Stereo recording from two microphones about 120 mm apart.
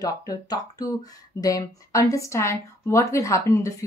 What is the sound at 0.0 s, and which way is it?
A woman's voice, 30° left (ahead or behind).